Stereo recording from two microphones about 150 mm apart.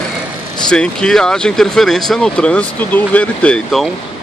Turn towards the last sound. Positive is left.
turn(degrees=5)  # may be behind; listen again after turning